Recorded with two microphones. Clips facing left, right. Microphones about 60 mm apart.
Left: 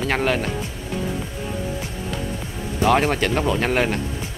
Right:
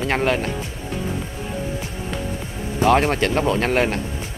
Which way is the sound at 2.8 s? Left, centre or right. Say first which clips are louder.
Right 1 dB; centre.